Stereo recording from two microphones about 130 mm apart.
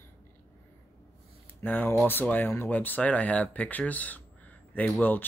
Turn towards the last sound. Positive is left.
turn(degrees=15)  # may be behind; listen again after turning